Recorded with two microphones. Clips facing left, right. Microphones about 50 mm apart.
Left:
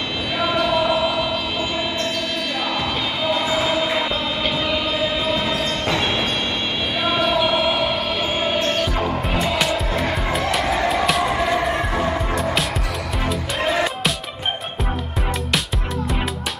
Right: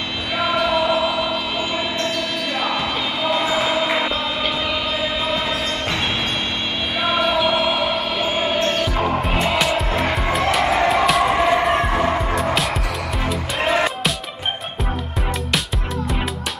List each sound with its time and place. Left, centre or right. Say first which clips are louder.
0.4 s music: right 1 dB; centre
3.3 s basketball bounce: right 1 dB; centre
7.1 s music: right 1 dB; centre
9.0 s music: right 2 dB; centre
9.6 s music: right 2 dB; centre
11.2 s a sound: right 3 dB; centre
11.8 s music: right 3 dB; centre